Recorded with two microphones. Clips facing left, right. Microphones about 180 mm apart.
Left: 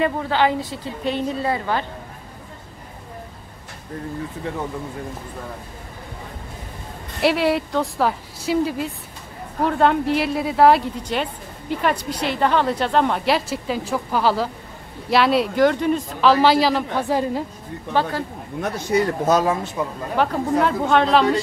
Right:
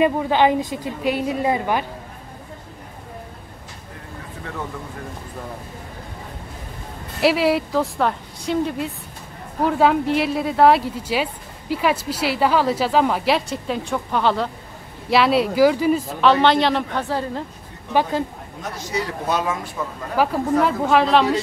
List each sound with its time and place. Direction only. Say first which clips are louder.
0.0 s a woman's voice: right 3 dB; 15° right (ahead or behind)
7.2 s a woman's voice: right 1 dB; centre (ahead or behind)
18.6 s speech: left 6 dB; 55° left (ahead or behind); by 19.6 s 40° left (ahead or behind)
20.2 s a woman's voice: right 1 dB; 5° right (ahead or behind)